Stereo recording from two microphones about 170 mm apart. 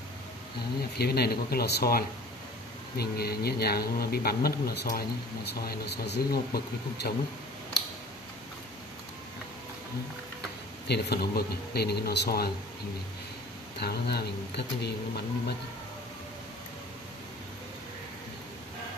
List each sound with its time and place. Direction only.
0.9 s speech: 70° left (ahead or behind)
10.9 s speech: 70° left (ahead or behind)
13.7 s speech: 70° left (ahead or behind)